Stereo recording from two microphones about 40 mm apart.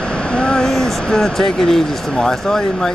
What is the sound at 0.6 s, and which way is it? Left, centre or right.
Speech, centre.